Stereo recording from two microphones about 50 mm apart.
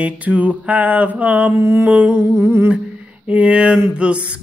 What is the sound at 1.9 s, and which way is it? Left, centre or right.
Mantra, right.